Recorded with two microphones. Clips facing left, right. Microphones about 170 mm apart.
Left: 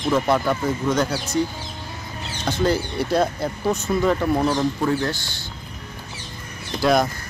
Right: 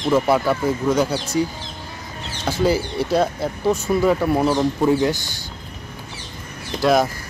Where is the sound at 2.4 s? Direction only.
5° right (ahead or behind).